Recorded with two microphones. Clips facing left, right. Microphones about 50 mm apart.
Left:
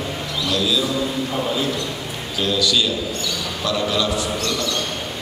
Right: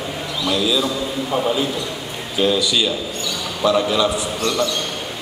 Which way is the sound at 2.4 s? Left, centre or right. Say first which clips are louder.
Right 2 dB; centre.